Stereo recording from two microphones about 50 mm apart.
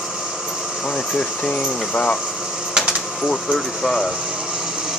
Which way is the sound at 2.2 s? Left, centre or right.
Centre.